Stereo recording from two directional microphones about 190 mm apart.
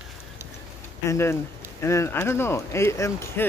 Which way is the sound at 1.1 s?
15° left (ahead or behind).